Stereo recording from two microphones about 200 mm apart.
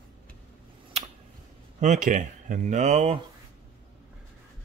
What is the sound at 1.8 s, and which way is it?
Speech, 40° right (ahead or behind).